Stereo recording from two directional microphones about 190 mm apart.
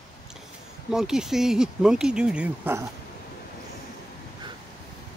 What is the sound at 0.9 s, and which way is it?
Speech, centre (ahead or behind).